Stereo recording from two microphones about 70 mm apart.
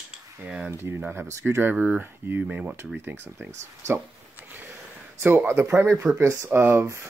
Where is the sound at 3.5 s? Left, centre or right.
Right.